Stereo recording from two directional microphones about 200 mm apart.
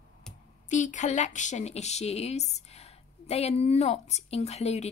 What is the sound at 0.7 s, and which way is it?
Speech, 35° left (ahead or behind).